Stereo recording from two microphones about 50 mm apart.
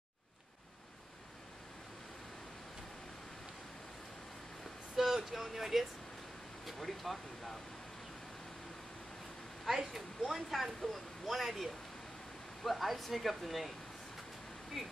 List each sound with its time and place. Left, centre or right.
4.9 s speech: centre
9.7 s speech: centre